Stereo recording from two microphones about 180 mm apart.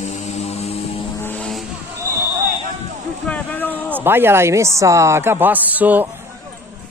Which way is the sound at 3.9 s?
10° right (ahead or behind).